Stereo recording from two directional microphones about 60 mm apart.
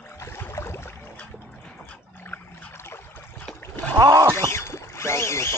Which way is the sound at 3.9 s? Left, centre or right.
Right.